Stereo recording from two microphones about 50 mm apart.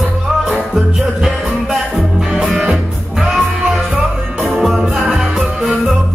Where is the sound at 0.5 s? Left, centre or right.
Centre.